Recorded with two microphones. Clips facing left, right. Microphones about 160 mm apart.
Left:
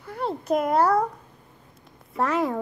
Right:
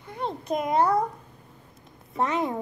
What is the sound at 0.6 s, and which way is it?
Speech, 60° left (ahead or behind).